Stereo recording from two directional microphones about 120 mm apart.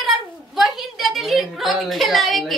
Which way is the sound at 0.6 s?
Centre (ahead or behind).